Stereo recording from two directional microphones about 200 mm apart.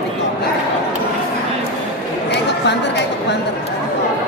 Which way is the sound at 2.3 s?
60° left (ahead or behind).